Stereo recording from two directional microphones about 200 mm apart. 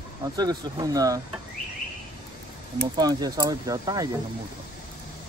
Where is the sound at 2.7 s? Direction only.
20° right (ahead or behind).